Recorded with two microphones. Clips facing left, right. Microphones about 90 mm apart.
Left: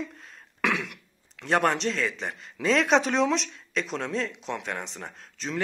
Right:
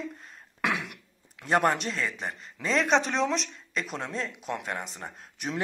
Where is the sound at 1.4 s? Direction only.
5° right (ahead or behind).